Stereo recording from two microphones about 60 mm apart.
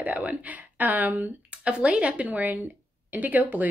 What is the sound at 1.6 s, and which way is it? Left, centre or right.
A woman's voice, centre.